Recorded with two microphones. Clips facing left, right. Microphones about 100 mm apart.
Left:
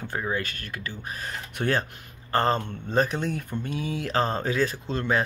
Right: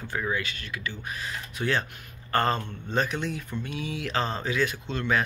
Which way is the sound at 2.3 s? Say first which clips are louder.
Left 2 dB; 35° left (ahead or behind).